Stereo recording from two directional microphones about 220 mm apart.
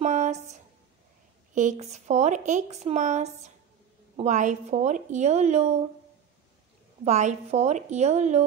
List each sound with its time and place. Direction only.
0.0 s a sound: 35° right (ahead or behind)
1.5 s speech: 35° right (ahead or behind)
7.1 s speech: 30° right (ahead or behind)